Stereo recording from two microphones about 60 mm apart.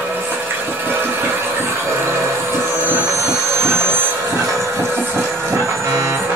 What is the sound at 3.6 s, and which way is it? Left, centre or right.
Vehicle, right.